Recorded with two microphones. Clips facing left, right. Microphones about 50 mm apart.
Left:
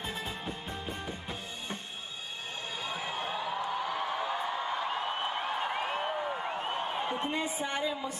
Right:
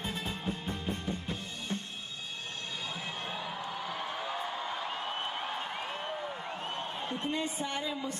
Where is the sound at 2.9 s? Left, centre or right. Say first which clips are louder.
Left 6 dB; centre.